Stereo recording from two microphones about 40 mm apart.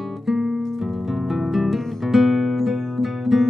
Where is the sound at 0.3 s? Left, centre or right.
Centre.